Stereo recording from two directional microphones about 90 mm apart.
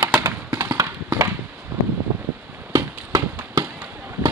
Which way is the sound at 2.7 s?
40° right (ahead or behind).